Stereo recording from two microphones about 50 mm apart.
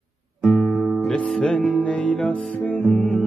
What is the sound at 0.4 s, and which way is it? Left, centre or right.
Music, centre.